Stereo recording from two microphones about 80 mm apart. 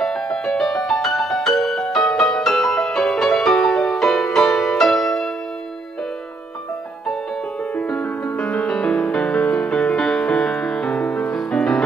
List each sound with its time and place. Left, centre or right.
0.0 s music: centre
7.7 s music: centre